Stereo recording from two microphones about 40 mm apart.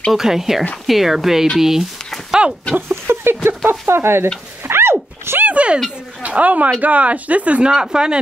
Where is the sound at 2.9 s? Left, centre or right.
Right.